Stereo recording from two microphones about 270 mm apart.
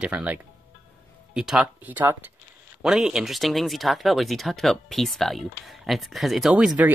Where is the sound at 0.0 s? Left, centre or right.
Centre.